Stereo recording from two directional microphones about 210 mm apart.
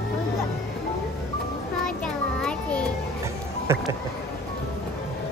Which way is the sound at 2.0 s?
5° left (ahead or behind).